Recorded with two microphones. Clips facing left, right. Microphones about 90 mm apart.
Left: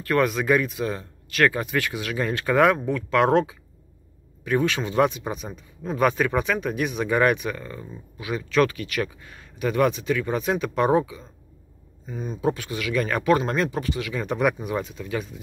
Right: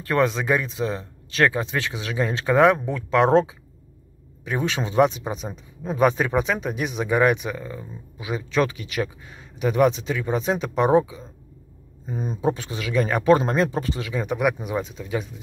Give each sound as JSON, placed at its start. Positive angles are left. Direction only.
{"t": 0.0, "sound": "speech", "side_deg": -25}
{"t": 12.1, "sound": "speech", "side_deg": -40}
{"t": 12.4, "sound": "speech", "side_deg": -25}
{"t": 14.1, "sound": "speech", "side_deg": -10}